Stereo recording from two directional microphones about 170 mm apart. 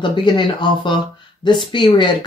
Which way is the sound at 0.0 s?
30° left (ahead or behind).